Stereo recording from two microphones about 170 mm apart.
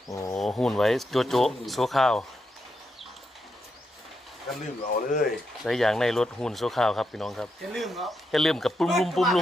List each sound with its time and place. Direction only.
0.1 s speech: 20° left (ahead or behind)
0.4 s speech: 5° left (ahead or behind)
4.9 s speech: 55° left (ahead or behind)
5.6 s speech: centre (ahead or behind)